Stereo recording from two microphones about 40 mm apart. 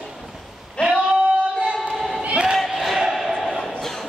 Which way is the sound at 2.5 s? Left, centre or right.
Centre.